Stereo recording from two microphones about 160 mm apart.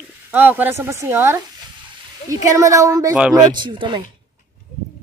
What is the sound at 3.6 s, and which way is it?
Speech, 30° right (ahead or behind).